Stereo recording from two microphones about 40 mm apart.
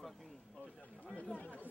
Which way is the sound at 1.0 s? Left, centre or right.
Left.